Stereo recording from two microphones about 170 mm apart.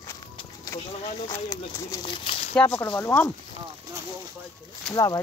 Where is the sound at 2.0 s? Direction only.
30° left (ahead or behind).